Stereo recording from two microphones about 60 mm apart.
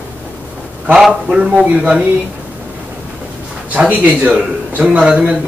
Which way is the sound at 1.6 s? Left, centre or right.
Right.